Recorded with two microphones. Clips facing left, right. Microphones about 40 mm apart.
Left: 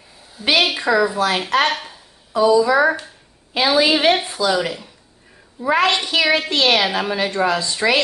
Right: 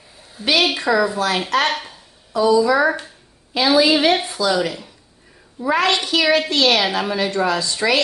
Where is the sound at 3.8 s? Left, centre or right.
Left.